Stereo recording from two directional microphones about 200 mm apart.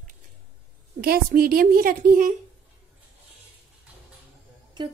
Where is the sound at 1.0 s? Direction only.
50° right (ahead or behind).